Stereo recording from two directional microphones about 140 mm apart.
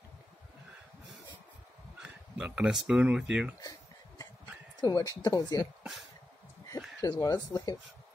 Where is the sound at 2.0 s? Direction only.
5° right (ahead or behind).